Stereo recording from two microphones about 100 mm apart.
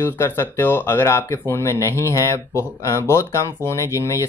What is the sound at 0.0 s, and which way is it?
Speech, 20° left (ahead or behind).